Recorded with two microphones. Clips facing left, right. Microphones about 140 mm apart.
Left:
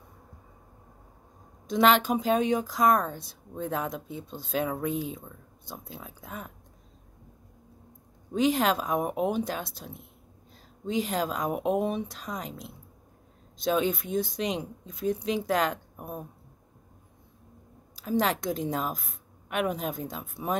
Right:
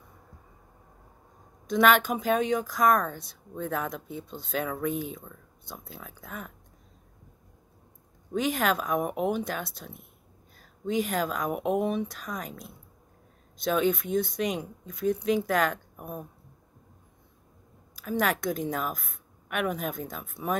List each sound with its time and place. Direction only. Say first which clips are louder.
1.7 s speech: even; 25° left (ahead or behind)
8.3 s speech: left 2 dB; 25° left (ahead or behind)
17.9 s speech: left 1 dB; 30° left (ahead or behind)